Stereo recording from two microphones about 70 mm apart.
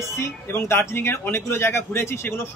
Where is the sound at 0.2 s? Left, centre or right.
Left.